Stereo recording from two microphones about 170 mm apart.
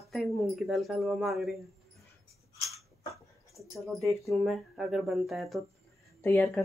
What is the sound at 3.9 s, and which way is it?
Speech, centre (ahead or behind).